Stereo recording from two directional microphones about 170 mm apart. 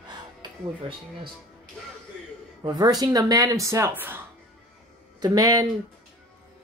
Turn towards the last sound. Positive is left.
turn(degrees=-20)  # may be behind; listen again after turning